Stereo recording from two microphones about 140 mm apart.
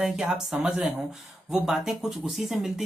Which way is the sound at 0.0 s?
5° right (ahead or behind).